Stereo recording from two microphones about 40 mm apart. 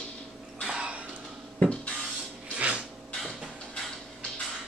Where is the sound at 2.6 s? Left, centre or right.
Right.